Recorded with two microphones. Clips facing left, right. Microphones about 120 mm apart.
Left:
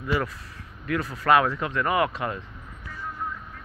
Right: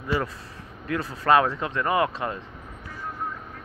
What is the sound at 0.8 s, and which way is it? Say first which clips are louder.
Speech: even; 25° right (ahead or behind).